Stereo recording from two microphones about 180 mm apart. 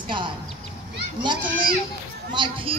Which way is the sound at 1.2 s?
25° right (ahead or behind).